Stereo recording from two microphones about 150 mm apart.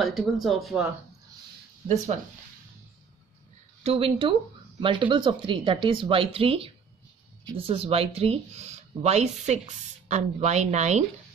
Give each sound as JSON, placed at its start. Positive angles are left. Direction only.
{"t": 0.0, "sound": "speech", "side_deg": 0}
{"t": 3.8, "sound": "speech", "side_deg": -40}